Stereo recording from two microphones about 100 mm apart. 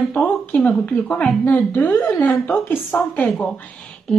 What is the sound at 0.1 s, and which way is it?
A woman's voice, 15° left (ahead or behind).